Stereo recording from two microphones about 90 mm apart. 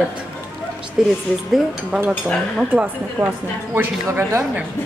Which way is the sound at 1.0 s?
5° right (ahead or behind).